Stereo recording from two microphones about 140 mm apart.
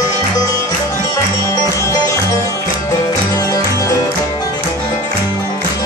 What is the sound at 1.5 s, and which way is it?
Music, 25° left (ahead or behind).